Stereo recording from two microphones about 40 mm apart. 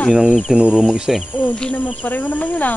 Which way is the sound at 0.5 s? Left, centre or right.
Right.